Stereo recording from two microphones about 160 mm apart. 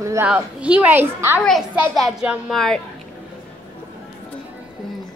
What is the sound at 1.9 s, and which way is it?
Speech, 5° right (ahead or behind).